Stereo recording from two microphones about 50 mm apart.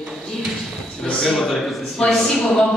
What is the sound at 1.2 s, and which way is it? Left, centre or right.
A man's voice, centre.